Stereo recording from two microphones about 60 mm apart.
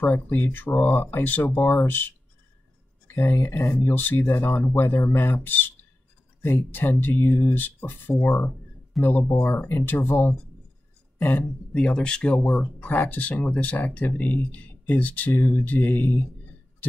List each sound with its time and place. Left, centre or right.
0.0 s speech: left
3.3 s speech: left
8.1 s speech: centre
9.4 s speech: left
11.7 s speech: centre
13.0 s speech: left